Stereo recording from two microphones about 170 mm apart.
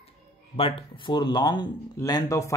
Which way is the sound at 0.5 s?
30° left (ahead or behind).